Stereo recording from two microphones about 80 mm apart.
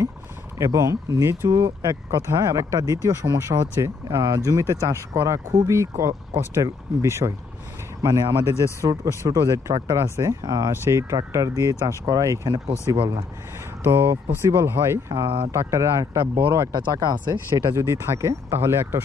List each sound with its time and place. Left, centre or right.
0.6 s speech: right
10.4 s speech: right
10.9 s speech: right
12.9 s speech: right
13.8 s speech: right
15.1 s speech: right
15.5 s speech: right
16.7 s speech: right
17.7 s speech: right